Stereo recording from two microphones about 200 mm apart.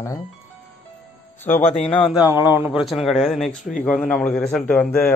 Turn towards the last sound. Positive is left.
turn(degrees=5)  # may be behind; listen again after turning